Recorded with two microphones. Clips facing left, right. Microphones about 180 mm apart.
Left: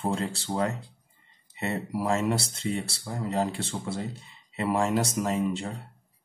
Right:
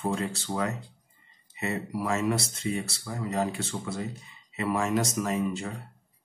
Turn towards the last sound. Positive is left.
turn(degrees=30)  # may be behind; listen again after turning